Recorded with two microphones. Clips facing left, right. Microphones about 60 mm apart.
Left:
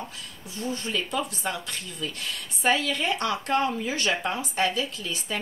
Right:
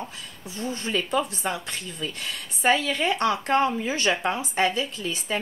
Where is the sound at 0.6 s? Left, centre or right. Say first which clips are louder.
Right 2 dB; right.